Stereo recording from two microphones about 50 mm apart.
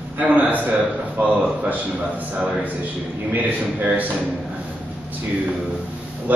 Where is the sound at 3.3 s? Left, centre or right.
Right.